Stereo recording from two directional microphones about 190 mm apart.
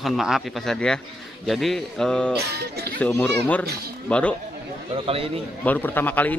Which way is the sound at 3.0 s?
10° left (ahead or behind).